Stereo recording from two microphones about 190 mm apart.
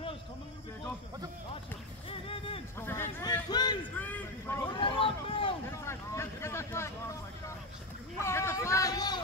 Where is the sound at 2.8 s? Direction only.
15° left (ahead or behind).